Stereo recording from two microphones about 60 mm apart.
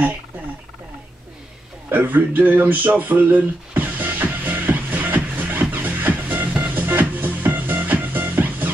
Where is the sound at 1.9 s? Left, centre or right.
Right.